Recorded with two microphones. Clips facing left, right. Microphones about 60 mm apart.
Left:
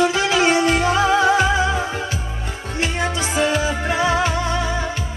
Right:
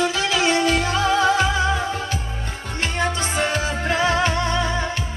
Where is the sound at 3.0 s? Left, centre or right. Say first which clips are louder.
Left 1 dB; centre.